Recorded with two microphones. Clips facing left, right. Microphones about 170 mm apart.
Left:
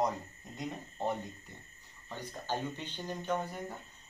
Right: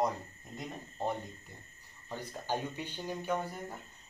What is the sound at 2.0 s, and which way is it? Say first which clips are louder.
Speech: right 1 dB; 15° right (ahead or behind).